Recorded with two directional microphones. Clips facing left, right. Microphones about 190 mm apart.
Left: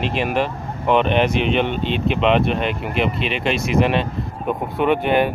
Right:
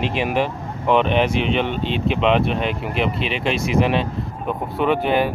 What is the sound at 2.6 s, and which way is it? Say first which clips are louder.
Speech: left 1 dB; 55° left (ahead or behind).